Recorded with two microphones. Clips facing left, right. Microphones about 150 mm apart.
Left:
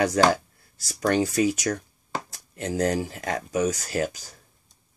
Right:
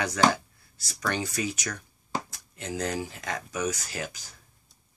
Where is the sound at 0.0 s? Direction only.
45° left (ahead or behind).